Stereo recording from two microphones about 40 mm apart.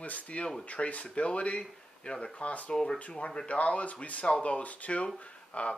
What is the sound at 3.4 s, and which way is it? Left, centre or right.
Speech, left.